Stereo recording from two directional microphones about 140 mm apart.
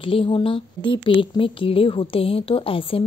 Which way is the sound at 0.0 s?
40° left (ahead or behind).